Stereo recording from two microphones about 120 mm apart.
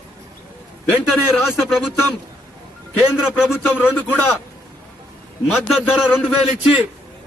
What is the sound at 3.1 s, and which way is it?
Speech, 5° right (ahead or behind).